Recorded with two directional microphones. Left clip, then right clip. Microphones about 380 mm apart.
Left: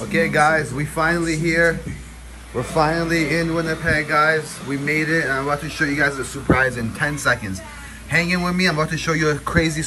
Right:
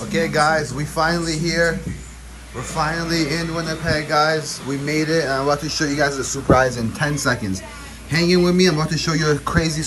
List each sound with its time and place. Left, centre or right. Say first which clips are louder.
0.1 s speech: left 1 dB; centre
2.8 s speech: left 2 dB; centre